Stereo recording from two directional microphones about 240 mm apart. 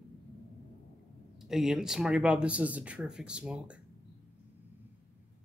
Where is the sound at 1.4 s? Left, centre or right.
Centre.